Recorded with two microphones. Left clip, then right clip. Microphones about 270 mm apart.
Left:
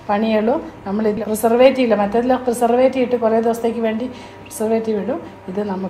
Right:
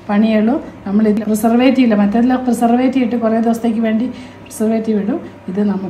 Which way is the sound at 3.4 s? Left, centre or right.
Left.